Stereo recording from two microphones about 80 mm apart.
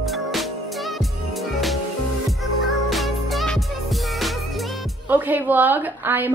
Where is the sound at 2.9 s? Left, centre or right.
Centre.